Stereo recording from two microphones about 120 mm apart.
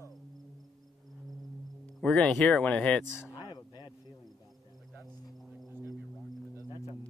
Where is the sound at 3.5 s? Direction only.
40° left (ahead or behind).